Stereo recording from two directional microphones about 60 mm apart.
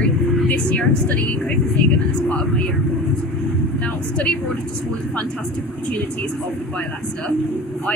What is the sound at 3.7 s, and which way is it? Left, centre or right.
Speech, left.